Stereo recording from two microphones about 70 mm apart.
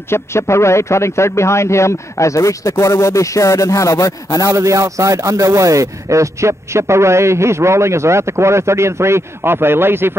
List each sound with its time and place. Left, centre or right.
0.1 s speech: left
4.5 s speech: right